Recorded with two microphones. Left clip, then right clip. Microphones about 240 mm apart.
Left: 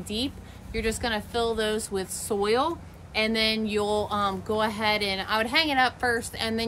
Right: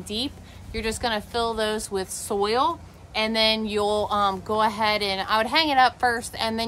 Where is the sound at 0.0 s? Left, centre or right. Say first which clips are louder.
Right 2 dB; centre.